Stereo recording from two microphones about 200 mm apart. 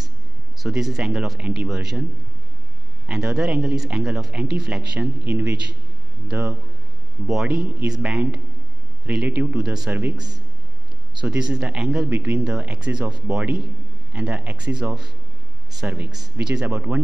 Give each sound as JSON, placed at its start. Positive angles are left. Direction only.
{"t": 0.6, "sound": "speech", "side_deg": 0}
{"t": 3.1, "sound": "a man's voice", "side_deg": -5}
{"t": 11.2, "sound": "speech", "side_deg": -5}